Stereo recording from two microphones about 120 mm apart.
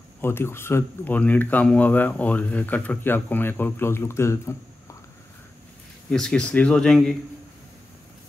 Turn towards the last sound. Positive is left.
turn(degrees=0)  # may be behind; listen again after turning